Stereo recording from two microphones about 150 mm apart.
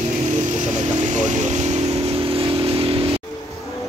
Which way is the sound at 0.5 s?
55° right (ahead or behind).